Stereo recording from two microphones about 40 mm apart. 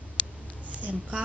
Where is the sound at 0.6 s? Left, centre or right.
Right.